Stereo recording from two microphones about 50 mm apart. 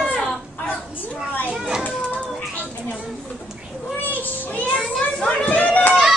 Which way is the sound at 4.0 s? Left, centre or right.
Left.